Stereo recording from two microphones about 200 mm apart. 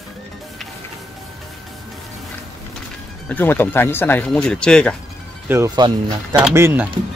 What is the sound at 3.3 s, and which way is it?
Speech, 10° left (ahead or behind).